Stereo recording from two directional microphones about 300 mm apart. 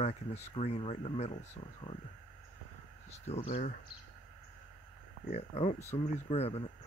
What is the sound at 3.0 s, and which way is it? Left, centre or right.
Speech, left.